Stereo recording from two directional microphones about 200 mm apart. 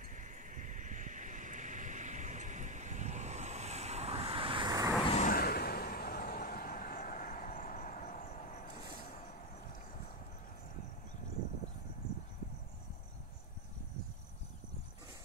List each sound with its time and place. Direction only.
0.2 s vehicle: 40° right (ahead or behind); by 4.9 s 20° right (ahead or behind)
5.1 s vehicle: 40° left (ahead or behind)